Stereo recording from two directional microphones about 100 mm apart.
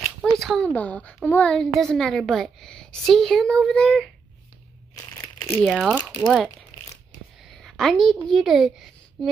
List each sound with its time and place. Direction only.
0.2 s a sound: 5° left (ahead or behind)
0.7 s a woman's voice: 15° left (ahead or behind)
4.9 s crunch: 30° left (ahead or behind)
5.6 s a woman's voice: centre (ahead or behind)